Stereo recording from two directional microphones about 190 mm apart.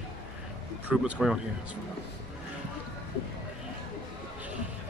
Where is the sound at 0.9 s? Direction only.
5° right (ahead or behind).